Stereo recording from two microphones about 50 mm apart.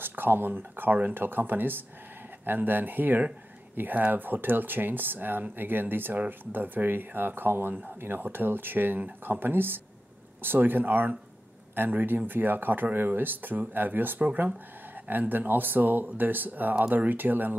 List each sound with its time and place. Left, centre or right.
0.0 s speech: right